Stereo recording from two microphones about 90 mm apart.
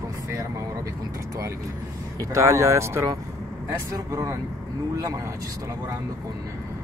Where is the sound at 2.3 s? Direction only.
35° right (ahead or behind).